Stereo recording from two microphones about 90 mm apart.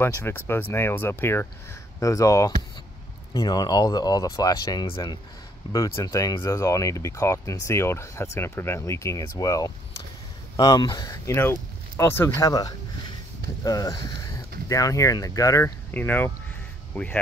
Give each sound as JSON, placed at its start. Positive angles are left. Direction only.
{"t": 0.0, "sound": "speech", "side_deg": 25}
{"t": 2.0, "sound": "speech", "side_deg": 35}
{"t": 4.8, "sound": "speech", "side_deg": 60}
{"t": 5.7, "sound": "speech", "side_deg": 40}
{"t": 12.0, "sound": "speech", "side_deg": 30}
{"t": 12.4, "sound": "speech", "side_deg": 45}
{"t": 15.9, "sound": "speech", "side_deg": 20}